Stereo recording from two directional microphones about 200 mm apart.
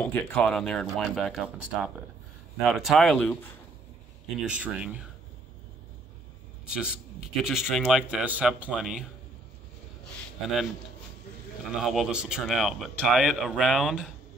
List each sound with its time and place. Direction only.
0.0 s speech: 5° left (ahead or behind)
4.5 s speech: 5° right (ahead or behind)
6.7 s speech: 5° right (ahead or behind)
11.8 s speech: centre (ahead or behind)